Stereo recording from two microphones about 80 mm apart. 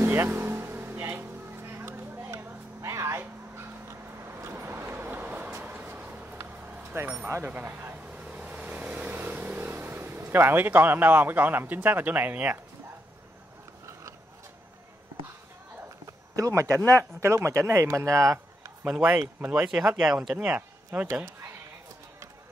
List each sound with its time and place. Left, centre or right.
0.0 s vehicle: right
6.5 s a sound: right
6.9 s speech: right
7.2 s vehicle: right
16.1 s speech: right
18.9 s speech: centre